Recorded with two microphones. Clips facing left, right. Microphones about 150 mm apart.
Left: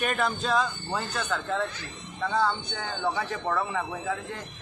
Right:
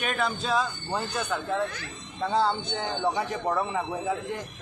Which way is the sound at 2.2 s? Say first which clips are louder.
Right 2 dB; 30° right (ahead or behind).